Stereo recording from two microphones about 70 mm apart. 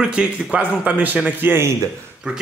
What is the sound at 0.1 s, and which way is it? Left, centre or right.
A man's voice, centre.